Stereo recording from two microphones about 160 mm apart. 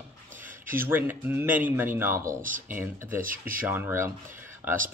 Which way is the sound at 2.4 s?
55° right (ahead or behind).